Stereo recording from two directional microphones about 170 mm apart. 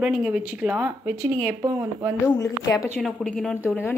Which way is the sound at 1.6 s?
20° right (ahead or behind).